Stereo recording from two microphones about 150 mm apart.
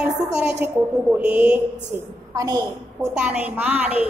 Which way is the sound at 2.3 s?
25° right (ahead or behind).